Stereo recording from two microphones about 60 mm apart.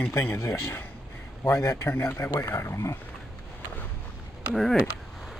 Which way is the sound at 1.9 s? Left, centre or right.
Left.